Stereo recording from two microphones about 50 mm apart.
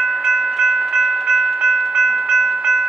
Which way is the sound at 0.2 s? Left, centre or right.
Centre.